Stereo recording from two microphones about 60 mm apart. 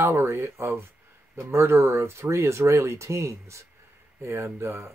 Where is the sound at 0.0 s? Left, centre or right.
Right.